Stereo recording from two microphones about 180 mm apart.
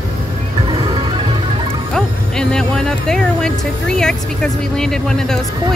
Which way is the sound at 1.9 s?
5° left (ahead or behind).